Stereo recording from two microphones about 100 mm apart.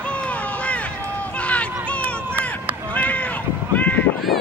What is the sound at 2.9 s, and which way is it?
Cat, 15° left (ahead or behind).